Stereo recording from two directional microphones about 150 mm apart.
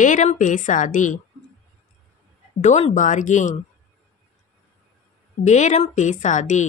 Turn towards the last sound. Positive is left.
turn(degrees=55)  # may be behind; listen again after turning